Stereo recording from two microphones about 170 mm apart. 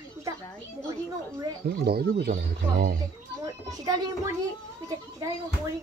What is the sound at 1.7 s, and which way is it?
Speech, 70° right (ahead or behind).